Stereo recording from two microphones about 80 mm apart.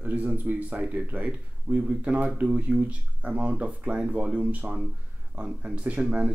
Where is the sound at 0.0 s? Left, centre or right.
Right.